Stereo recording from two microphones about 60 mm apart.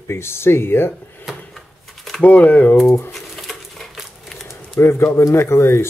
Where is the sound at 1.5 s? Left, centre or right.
Centre.